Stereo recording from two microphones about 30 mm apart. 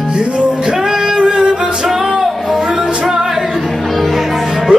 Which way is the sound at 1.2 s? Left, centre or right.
Right.